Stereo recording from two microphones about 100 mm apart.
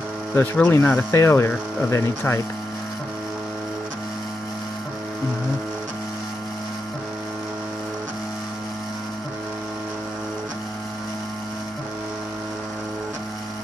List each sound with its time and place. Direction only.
0.4 s speech: 20° left (ahead or behind)